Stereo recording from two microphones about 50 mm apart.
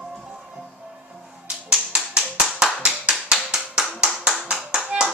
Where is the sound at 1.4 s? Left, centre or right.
Right.